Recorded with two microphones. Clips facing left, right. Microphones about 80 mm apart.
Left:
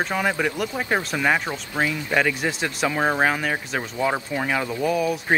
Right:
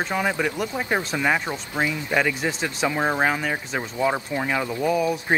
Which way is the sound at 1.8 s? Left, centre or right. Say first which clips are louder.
Left 1 dB; centre.